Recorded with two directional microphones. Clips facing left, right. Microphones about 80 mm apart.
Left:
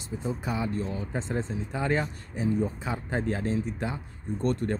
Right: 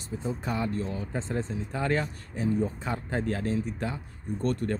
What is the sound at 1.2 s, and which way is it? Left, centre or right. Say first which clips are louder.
Speech: left 1 dB; left.